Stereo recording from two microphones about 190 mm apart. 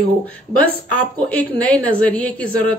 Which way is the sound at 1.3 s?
10° left (ahead or behind).